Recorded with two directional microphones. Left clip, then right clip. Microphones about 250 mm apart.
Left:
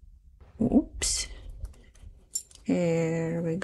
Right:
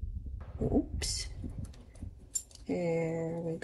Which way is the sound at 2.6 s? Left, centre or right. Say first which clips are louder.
Left 6 dB; left.